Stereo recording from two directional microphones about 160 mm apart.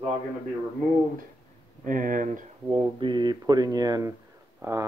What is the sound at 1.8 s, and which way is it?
Speech, 55° right (ahead or behind).